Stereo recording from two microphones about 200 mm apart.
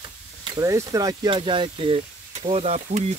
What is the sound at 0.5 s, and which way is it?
Speech, 15° right (ahead or behind).